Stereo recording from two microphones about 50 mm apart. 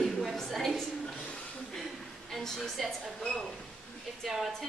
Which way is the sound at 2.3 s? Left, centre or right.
Centre.